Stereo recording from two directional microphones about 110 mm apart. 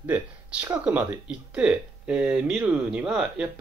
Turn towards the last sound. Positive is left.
turn(degrees=-10)  # may be behind; listen again after turning